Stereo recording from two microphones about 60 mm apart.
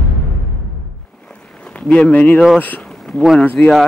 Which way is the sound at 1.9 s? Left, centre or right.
Centre.